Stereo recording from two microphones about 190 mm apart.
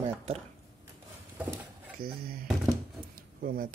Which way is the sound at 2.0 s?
50° right (ahead or behind).